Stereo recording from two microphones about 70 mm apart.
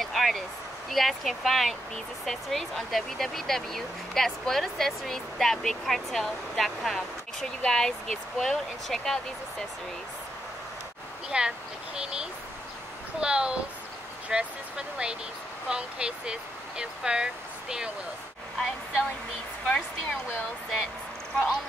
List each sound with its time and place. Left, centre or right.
0.0 s a sound: centre
0.8 s speech: centre
11.2 s speech: centre
19.6 s speech: centre